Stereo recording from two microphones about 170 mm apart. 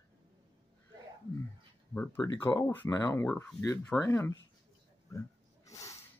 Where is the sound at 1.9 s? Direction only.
10° left (ahead or behind).